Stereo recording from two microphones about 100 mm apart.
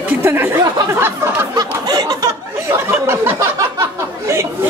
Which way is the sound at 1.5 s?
40° right (ahead or behind).